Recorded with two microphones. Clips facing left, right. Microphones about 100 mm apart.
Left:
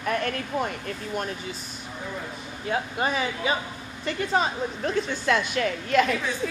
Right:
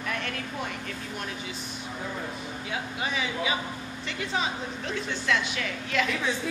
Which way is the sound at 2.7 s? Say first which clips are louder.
Left 7 dB; 45° left (ahead or behind).